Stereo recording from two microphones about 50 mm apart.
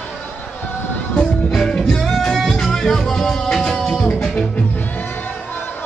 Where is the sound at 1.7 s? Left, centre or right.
Centre.